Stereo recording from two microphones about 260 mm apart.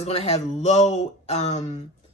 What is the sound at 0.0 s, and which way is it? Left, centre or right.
Speech, left.